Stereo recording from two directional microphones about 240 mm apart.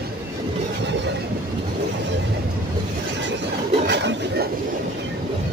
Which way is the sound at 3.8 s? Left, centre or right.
Right.